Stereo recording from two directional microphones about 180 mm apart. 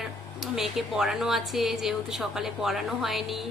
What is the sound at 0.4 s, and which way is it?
Speech, centre (ahead or behind).